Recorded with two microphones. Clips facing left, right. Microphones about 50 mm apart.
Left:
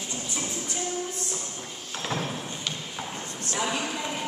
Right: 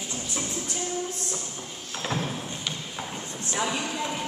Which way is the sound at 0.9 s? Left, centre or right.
Centre.